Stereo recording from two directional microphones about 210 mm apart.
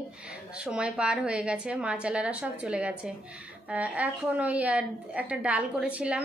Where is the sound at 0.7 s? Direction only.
5° right (ahead or behind).